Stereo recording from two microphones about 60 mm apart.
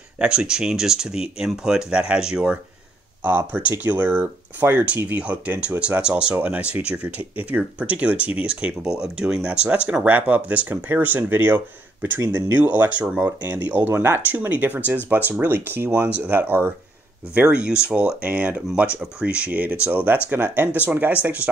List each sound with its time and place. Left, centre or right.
0.2 s speech: centre
3.3 s speech: right
14.3 s speech: right
17.5 s speech: centre